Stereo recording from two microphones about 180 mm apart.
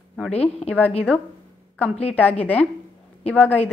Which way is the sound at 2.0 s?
10° left (ahead or behind).